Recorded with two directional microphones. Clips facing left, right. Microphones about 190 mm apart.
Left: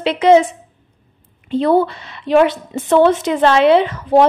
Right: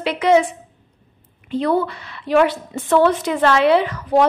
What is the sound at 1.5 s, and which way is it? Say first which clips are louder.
A woman's voice: left 5 dB; 30° left (ahead or behind).